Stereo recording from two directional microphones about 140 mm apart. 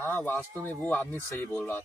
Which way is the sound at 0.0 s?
15° left (ahead or behind).